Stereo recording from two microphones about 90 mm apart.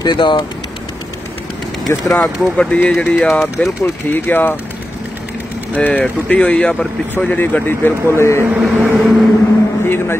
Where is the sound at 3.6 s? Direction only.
15° left (ahead or behind).